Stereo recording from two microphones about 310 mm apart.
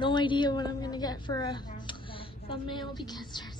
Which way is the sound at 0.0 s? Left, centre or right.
Centre.